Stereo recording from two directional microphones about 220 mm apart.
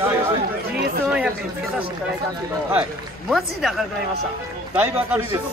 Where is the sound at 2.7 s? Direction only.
5° right (ahead or behind).